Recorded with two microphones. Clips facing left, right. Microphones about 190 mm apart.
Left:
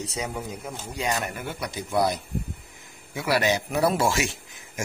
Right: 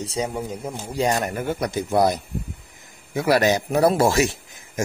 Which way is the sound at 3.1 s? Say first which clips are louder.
Right 5 dB; 45° right (ahead or behind).